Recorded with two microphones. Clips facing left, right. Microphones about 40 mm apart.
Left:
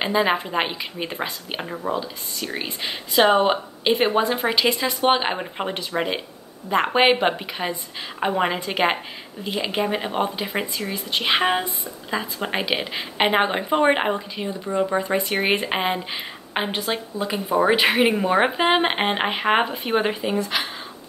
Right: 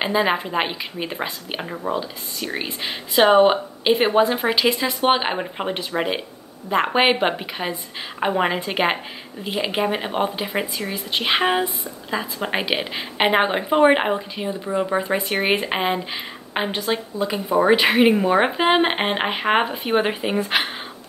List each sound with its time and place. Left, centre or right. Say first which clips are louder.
0.0 s a woman's voice: even; centre
20.3 s speech: right 3 dB; right